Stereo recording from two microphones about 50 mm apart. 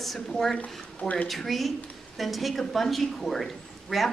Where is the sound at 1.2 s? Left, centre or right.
Centre.